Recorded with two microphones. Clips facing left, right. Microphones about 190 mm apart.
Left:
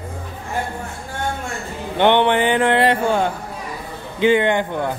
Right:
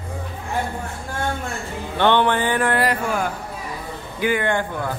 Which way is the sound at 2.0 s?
20° left (ahead or behind).